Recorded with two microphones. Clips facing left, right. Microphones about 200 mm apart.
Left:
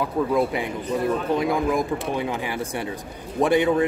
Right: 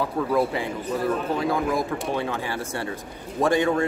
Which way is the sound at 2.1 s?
15° left (ahead or behind).